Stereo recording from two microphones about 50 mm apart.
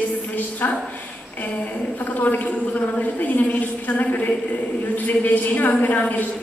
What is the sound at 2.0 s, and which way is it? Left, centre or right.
A woman's voice, left.